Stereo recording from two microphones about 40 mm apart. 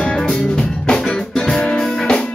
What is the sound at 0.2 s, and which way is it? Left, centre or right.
Music, centre.